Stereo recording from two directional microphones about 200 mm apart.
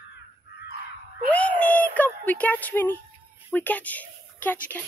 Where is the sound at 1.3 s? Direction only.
5° left (ahead or behind).